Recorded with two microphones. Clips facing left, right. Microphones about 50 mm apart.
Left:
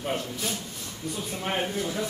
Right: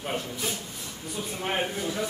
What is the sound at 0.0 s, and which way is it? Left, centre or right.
Speech, centre.